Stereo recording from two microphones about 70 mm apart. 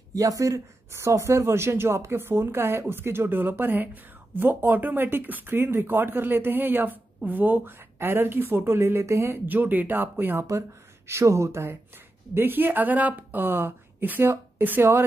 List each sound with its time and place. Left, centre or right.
0.1 s speech: right
0.9 s a woman's voice: right
9.5 s speech: right
11.1 s a woman's voice: right
12.4 s speech: right